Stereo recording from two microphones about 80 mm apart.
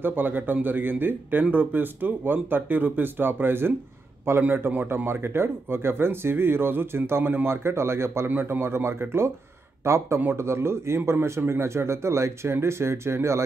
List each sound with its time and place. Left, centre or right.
0.0 s a man's voice: right